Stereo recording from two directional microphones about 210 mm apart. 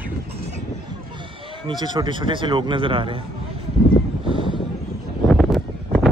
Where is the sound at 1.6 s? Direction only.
20° right (ahead or behind).